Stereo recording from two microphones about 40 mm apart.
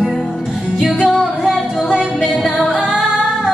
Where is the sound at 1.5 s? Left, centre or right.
Centre; by 3.2 s right.